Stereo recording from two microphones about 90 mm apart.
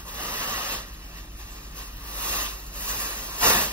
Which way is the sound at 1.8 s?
15° left (ahead or behind).